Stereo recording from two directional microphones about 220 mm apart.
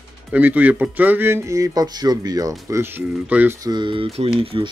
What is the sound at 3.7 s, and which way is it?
Speech, 20° right (ahead or behind).